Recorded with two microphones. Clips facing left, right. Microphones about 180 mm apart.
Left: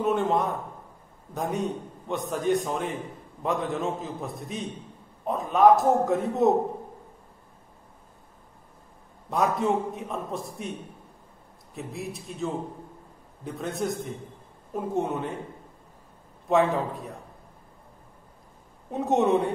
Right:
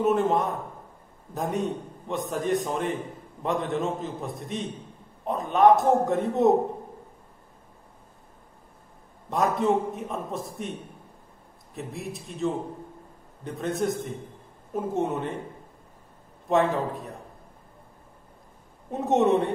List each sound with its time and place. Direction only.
0.0 s a man's voice: centre (ahead or behind)
9.3 s a man's voice: centre (ahead or behind)
16.4 s a man's voice: centre (ahead or behind)
18.9 s a man's voice: centre (ahead or behind)